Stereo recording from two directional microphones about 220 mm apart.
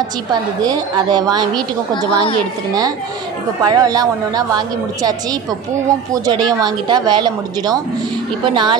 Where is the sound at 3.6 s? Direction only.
15° right (ahead or behind).